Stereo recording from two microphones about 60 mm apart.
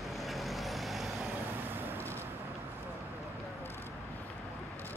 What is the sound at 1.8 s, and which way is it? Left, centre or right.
Vehicle, right.